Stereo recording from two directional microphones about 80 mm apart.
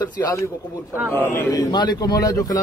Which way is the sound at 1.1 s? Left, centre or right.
Left.